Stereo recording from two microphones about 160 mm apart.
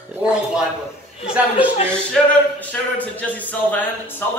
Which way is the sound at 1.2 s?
10° right (ahead or behind).